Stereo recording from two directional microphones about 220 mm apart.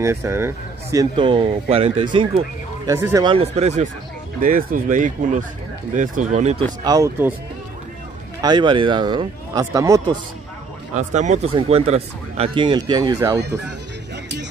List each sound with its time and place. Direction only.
0.0 s speech: 10° right (ahead or behind)
0.9 s speech: 20° right (ahead or behind)
2.9 s speech: 15° right (ahead or behind)
3.3 s speech: 30° right (ahead or behind)
6.8 s speech: 15° right (ahead or behind)
8.4 s speech: 20° right (ahead or behind)
11.0 s speech: 35° right (ahead or behind); by 13.4 s 15° right (ahead or behind)
13.4 s speech: 50° right (ahead or behind)